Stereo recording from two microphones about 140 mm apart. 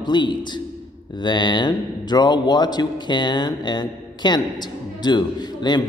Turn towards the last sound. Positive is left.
turn(degrees=30)  # may be behind; listen again after turning